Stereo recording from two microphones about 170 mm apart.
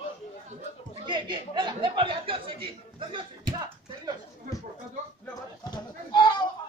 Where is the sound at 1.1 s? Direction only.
25° right (ahead or behind).